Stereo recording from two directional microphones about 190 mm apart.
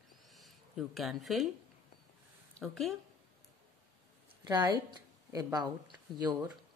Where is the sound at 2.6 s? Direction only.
Centre (ahead or behind).